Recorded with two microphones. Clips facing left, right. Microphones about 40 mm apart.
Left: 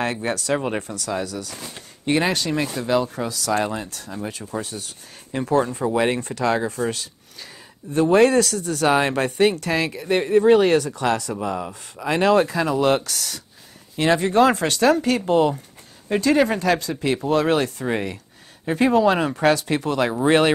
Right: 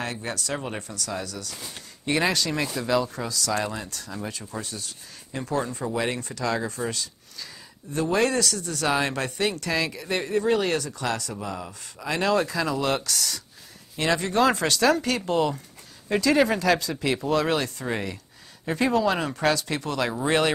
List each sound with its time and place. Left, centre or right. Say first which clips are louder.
0.0 s speech: left 7 dB; left
1.7 s speech: left 5 dB; centre
3.5 s speech: left 5 dB; left
6.9 s a sound: left 4 dB; left
8.3 s speech: left 7 dB; left
12.0 s speech: left 6 dB; left
13.1 s speech: right 1 dB; centre
13.9 s speech: left 6 dB; left